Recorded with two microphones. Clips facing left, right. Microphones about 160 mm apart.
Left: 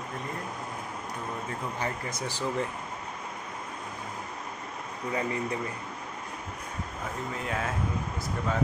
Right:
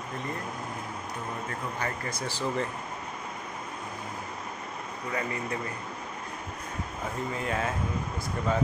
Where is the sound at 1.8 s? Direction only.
20° left (ahead or behind).